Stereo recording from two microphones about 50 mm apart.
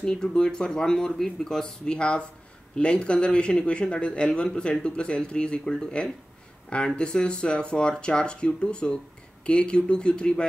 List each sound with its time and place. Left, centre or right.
0.0 s speech: centre